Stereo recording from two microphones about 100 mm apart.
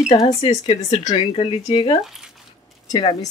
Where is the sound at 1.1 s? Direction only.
60° left (ahead or behind).